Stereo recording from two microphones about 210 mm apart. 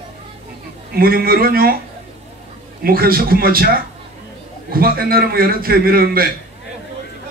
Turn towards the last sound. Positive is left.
turn(degrees=-45)  # may be behind; listen again after turning